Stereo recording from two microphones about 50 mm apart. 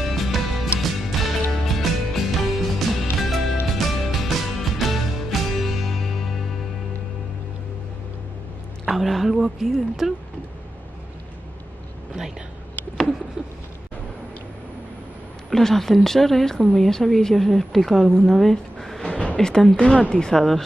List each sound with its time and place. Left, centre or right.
0.0 s music: centre
8.8 s a woman's voice: centre
15.5 s a woman's voice: centre
19.0 s a sound: left
19.8 s speech: centre